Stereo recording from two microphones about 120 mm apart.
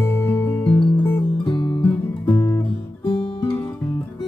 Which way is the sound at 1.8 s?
15° left (ahead or behind).